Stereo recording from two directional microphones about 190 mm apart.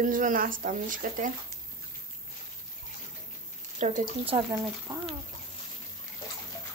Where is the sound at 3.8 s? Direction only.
35° right (ahead or behind).